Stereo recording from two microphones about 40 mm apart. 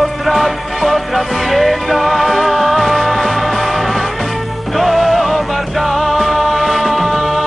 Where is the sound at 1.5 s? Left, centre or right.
Centre.